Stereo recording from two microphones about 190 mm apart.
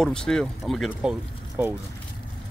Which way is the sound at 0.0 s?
5° left (ahead or behind).